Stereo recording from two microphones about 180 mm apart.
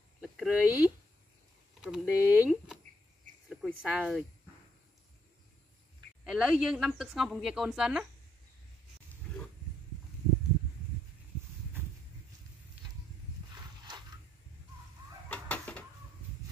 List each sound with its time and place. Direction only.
0.2 s a sound: 5° right (ahead or behind)
1.8 s speech: 5° right (ahead or behind)
6.2 s speech: 5° right (ahead or behind)
9.1 s wild animals: 10° left (ahead or behind)
13.6 s mechanisms: 25° right (ahead or behind)
15.2 s a sound: 10° left (ahead or behind)